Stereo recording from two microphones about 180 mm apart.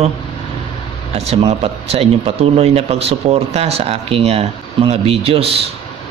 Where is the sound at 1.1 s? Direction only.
35° right (ahead or behind).